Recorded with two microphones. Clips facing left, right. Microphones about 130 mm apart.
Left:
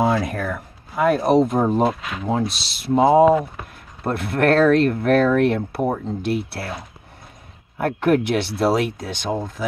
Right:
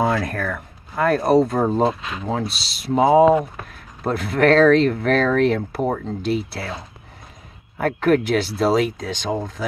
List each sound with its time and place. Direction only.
0.0 s speech: 10° left (ahead or behind)
2.0 s speech: 30° right (ahead or behind)
2.9 s speech: centre (ahead or behind)
7.8 s speech: 10° left (ahead or behind)